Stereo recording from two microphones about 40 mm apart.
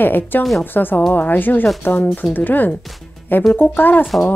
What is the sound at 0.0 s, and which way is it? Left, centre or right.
Speech, left.